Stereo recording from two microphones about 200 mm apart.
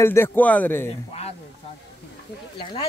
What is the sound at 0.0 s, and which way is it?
Speech, 10° left (ahead or behind).